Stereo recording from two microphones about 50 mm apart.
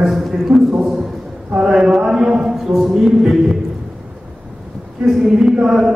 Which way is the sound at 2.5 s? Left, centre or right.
Centre.